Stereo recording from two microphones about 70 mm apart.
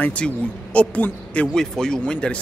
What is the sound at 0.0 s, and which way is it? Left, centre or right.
A man's voice, centre.